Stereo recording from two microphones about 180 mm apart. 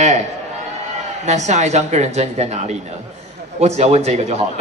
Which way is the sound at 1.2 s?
40° right (ahead or behind).